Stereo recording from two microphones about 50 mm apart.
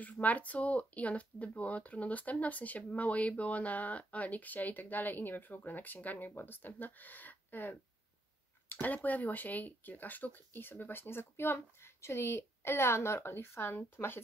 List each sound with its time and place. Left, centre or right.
0.1 s speech: left